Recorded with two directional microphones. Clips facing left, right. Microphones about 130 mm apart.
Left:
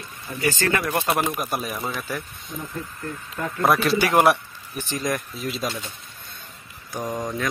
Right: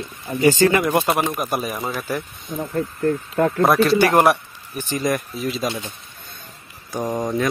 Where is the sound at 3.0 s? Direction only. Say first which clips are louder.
Right 13 dB; 55° right (ahead or behind).